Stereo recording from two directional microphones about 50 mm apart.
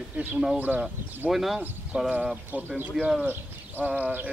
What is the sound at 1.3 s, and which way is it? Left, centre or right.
Speech, centre.